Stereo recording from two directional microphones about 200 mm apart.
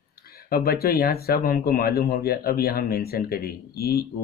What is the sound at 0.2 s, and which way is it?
Speech, 45° left (ahead or behind).